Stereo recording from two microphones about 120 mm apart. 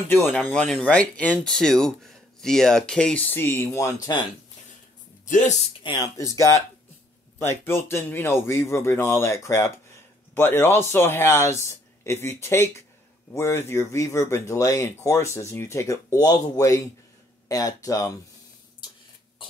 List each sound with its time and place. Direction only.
0.1 s speech: 15° left (ahead or behind)
5.2 s speech: 90° left
5.9 s speech: 30° left (ahead or behind)